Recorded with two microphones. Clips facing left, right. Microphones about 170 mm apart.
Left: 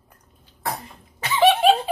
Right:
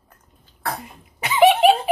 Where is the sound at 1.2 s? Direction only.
20° right (ahead or behind).